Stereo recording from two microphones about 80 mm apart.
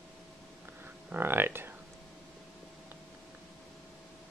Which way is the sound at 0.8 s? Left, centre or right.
Right.